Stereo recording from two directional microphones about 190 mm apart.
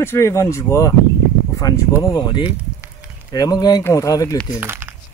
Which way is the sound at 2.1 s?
20° left (ahead or behind).